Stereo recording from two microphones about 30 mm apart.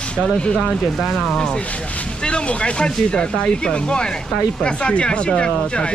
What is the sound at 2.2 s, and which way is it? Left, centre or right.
Speech, left.